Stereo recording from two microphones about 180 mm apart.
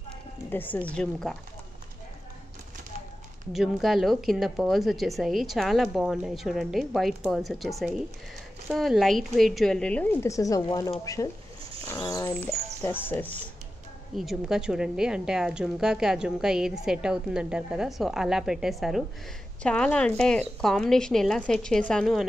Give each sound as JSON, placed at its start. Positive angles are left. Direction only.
{"t": 0.5, "sound": "speech", "side_deg": 10}
{"t": 3.5, "sound": "a woman's voice", "side_deg": 0}
{"t": 11.9, "sound": "music", "side_deg": 20}
{"t": 14.1, "sound": "a woman's voice", "side_deg": 0}